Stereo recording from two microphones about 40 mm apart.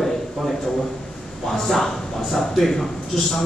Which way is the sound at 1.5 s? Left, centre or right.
Centre.